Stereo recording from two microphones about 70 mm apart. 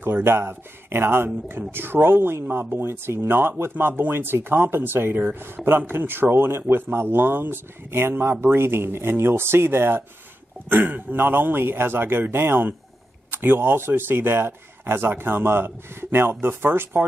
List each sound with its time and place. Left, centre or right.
0.0 s speech: right